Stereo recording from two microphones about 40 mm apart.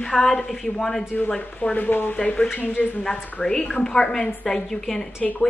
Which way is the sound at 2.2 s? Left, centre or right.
Left.